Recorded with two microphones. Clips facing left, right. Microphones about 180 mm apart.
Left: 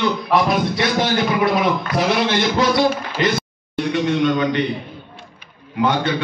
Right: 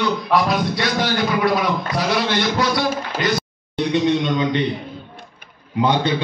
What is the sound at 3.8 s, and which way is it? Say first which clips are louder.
Speech: even; 20° right (ahead or behind).